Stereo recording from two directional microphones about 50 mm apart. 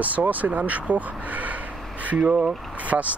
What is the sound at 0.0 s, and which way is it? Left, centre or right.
Speech, right.